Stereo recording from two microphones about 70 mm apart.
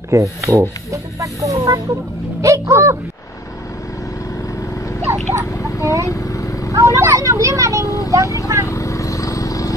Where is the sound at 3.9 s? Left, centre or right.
Left.